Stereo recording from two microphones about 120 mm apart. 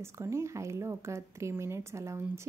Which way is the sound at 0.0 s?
25° right (ahead or behind).